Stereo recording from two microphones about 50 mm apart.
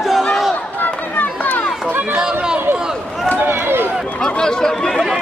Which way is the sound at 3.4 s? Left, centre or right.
Right.